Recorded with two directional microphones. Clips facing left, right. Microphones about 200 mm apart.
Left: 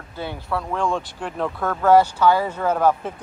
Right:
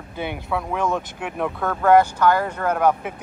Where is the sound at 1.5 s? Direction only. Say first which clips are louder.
Even; 5° left (ahead or behind).